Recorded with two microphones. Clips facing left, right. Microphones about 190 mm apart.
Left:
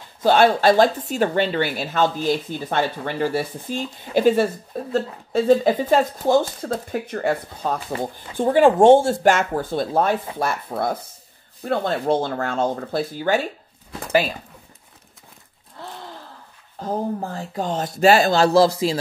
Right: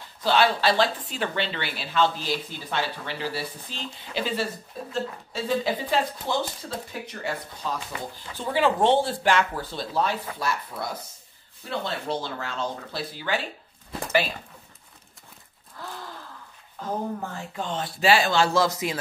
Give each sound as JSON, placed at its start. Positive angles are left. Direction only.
{"t": 0.2, "sound": "speech", "side_deg": 50}
{"t": 15.8, "sound": "a sound", "side_deg": 25}
{"t": 16.8, "sound": "speech", "side_deg": 35}